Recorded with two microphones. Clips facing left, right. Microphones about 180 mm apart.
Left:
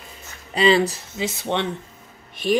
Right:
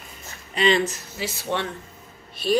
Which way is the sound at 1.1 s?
20° left (ahead or behind).